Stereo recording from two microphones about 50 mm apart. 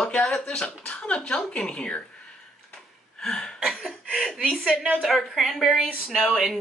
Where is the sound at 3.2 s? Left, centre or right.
Centre.